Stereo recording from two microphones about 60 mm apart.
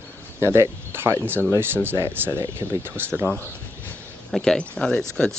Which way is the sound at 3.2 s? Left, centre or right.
Left.